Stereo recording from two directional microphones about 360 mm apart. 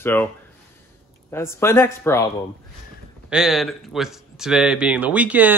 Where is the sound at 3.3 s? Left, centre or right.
Centre.